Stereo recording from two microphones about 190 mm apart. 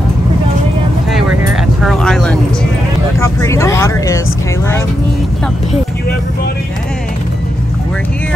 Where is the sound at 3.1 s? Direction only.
15° left (ahead or behind).